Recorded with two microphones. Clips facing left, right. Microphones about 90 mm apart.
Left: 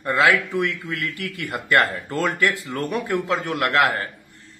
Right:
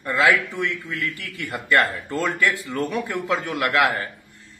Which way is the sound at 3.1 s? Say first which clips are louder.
Left 2 dB; centre (ahead or behind).